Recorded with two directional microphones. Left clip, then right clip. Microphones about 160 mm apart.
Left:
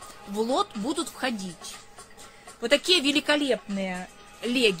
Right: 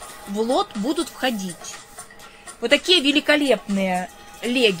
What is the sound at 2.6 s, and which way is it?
Speech, 20° left (ahead or behind).